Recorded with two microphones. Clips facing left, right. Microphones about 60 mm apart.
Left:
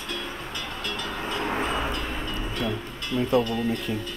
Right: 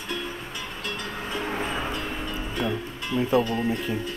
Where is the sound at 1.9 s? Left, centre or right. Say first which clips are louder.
Even; centre.